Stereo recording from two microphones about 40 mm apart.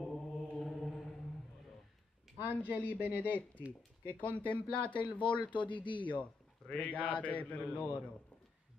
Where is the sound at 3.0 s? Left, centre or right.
Right.